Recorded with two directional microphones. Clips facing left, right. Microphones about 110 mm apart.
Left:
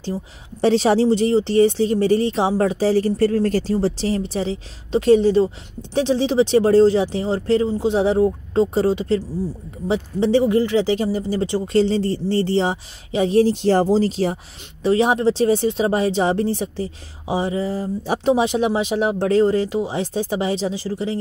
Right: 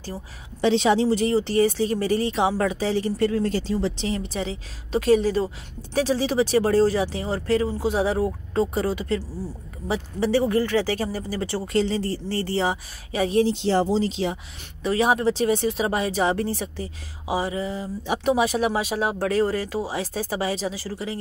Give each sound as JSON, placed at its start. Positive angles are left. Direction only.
{"t": 0.6, "sound": "speech", "side_deg": 40}
{"t": 13.4, "sound": "speech", "side_deg": 50}
{"t": 14.9, "sound": "speech", "side_deg": 25}
{"t": 17.7, "sound": "speech", "side_deg": 40}
{"t": 18.2, "sound": "speech", "side_deg": 25}